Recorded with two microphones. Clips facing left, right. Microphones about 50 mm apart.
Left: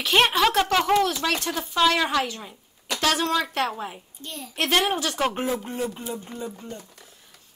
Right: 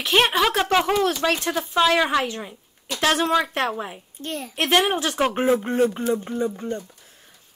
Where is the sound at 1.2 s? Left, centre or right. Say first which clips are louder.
Right 3 dB; centre.